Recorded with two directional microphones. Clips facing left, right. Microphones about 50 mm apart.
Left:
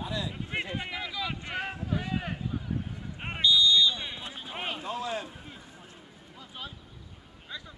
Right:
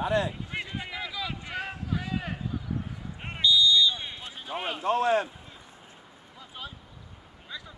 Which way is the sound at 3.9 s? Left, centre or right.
Centre.